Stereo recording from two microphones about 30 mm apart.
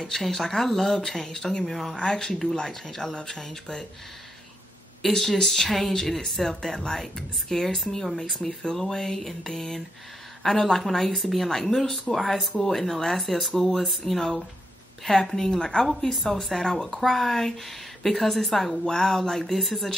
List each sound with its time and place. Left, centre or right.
0.0 s speech: centre
1.7 s speech: centre
2.0 s speech: left
5.0 s speech: centre
12.1 s speech: centre
18.9 s speech: centre